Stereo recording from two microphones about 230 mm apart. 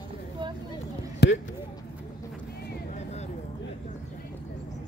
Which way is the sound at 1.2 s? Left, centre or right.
Left.